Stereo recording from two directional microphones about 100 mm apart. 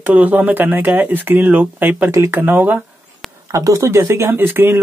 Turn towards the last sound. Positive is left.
turn(degrees=-20)  # may be behind; listen again after turning